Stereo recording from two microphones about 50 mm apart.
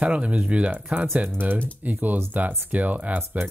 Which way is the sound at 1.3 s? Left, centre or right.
Right.